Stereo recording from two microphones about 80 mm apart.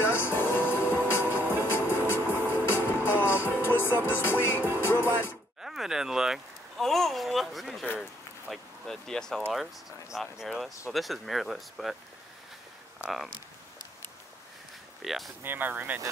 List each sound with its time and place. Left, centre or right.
0.0 s music: left
5.6 s a sound: centre
9.5 s speech: centre
15.0 s speech: centre
15.4 s speech: right